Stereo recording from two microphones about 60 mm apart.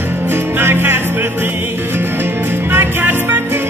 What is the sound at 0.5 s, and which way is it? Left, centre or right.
Music, right.